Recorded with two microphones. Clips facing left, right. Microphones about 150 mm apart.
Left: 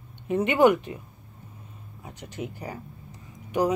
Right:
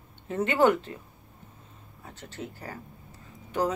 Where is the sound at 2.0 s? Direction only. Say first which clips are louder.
Left 4 dB; 15° left (ahead or behind).